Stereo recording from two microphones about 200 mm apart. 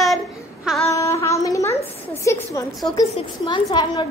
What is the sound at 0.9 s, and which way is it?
Child singing, 15° left (ahead or behind).